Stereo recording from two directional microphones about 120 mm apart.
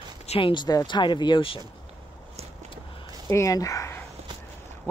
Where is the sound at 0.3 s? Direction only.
45° left (ahead or behind).